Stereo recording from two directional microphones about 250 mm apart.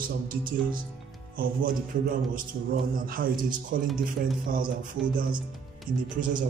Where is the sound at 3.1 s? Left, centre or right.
Right.